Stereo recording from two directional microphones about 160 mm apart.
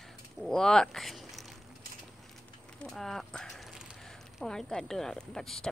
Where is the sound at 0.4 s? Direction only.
5° left (ahead or behind).